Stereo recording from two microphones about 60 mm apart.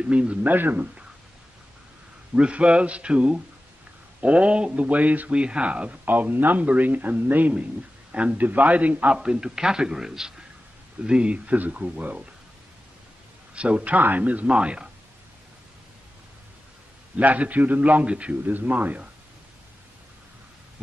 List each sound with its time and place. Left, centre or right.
0.0 s speech: right
2.3 s a man's voice: centre
13.6 s speech: right
17.2 s speech: right